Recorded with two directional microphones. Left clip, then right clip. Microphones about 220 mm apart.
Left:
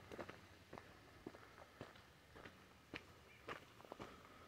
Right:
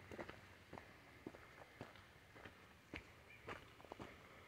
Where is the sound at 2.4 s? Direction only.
50° right (ahead or behind).